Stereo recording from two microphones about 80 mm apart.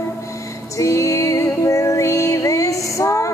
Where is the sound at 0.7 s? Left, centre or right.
Left.